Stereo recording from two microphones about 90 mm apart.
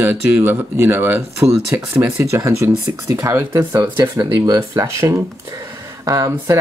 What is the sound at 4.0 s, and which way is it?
Speech, 45° right (ahead or behind).